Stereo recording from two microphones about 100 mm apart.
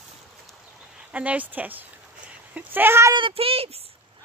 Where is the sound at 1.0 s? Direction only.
15° right (ahead or behind).